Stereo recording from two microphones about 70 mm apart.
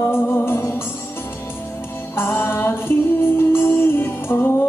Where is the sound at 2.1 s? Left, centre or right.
Left.